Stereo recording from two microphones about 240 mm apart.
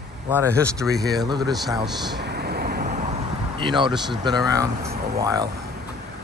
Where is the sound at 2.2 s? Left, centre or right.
Right.